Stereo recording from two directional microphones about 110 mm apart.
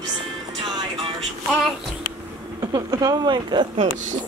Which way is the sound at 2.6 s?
35° right (ahead or behind).